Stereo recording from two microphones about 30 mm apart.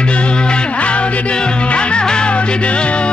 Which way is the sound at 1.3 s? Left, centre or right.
Left.